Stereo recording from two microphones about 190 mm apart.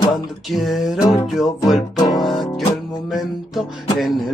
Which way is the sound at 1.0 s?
15° left (ahead or behind).